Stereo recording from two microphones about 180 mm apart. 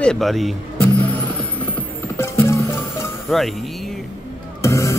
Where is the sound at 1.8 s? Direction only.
10° left (ahead or behind).